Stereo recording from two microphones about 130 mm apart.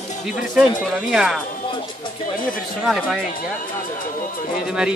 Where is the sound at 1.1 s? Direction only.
Centre (ahead or behind).